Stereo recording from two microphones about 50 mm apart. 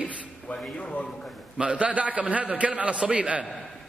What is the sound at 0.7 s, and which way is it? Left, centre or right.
Speech, left.